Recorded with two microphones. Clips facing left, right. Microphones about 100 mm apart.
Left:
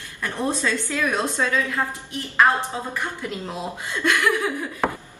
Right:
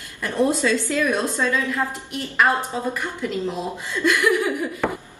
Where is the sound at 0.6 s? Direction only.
15° right (ahead or behind).